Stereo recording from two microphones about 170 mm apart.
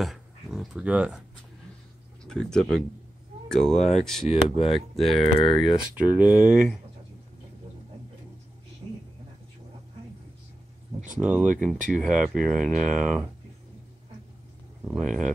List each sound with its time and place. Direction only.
0.0 s speech: centre (ahead or behind)
2.2 s speech: 5° left (ahead or behind)
3.7 s speech: 40° left (ahead or behind)
4.0 s speech: centre (ahead or behind)
4.3 s speech: 35° left (ahead or behind)
5.9 s speech: 10° right (ahead or behind)
11.1 s speech: 10° right (ahead or behind)
14.9 s speech: 5° right (ahead or behind)